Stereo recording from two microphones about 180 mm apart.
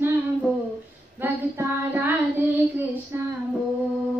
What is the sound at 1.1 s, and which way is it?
Child singing, 10° right (ahead or behind).